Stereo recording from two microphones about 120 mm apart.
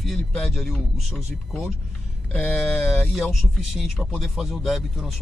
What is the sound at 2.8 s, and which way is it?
Speech, 15° left (ahead or behind).